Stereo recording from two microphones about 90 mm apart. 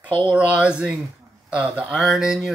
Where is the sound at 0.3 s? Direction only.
10° right (ahead or behind).